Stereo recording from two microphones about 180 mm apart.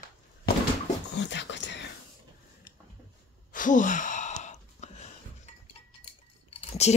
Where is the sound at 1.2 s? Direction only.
75° left (ahead or behind).